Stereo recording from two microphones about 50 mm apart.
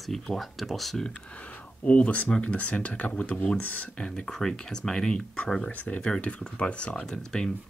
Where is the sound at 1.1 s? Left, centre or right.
Left.